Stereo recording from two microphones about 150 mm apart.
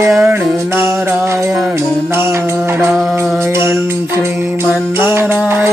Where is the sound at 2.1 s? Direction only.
15° right (ahead or behind).